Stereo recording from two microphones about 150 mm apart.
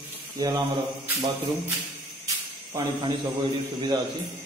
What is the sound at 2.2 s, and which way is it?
A man's voice, 25° right (ahead or behind).